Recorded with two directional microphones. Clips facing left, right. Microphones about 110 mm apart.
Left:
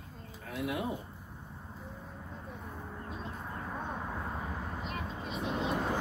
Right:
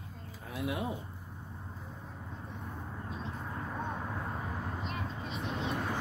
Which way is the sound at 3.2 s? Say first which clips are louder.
Right 2 dB; centre (ahead or behind).